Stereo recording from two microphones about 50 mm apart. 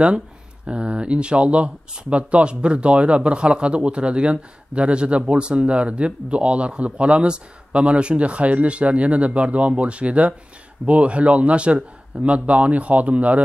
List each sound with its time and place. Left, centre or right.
0.7 s speech: right